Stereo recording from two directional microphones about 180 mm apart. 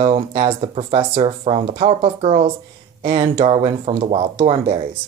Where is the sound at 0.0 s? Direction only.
35° right (ahead or behind).